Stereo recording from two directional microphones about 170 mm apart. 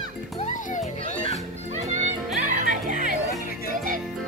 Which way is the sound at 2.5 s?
55° right (ahead or behind).